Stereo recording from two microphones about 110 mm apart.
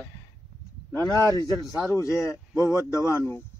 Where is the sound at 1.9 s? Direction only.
25° left (ahead or behind).